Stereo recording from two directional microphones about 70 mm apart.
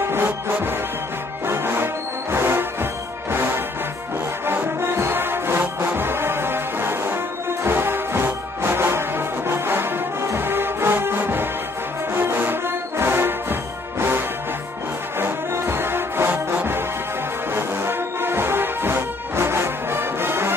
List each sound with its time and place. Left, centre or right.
0.0 s music: right